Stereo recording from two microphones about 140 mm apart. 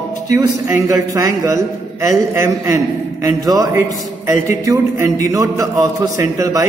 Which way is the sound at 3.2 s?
25° right (ahead or behind).